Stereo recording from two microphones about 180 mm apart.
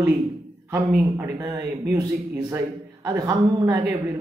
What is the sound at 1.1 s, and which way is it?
A woman's voice, 15° right (ahead or behind).